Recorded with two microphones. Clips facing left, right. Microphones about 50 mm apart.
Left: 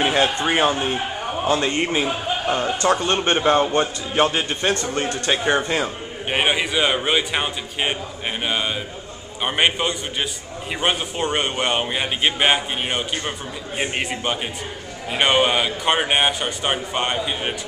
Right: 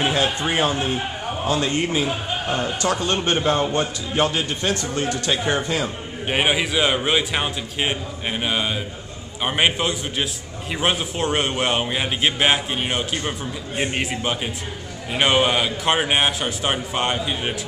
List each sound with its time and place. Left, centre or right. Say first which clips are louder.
0.0 s a man's voice: left 2 dB; centre
6.2 s a man's voice: even; centre